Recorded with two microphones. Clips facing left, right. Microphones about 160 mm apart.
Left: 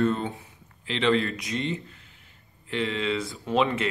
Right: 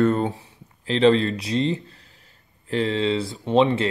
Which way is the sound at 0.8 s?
35° right (ahead or behind).